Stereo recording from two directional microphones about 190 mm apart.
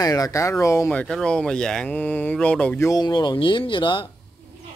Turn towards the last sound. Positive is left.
turn(degrees=25)  # may be behind; listen again after turning